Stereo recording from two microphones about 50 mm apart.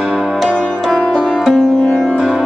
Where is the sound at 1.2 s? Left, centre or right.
Centre.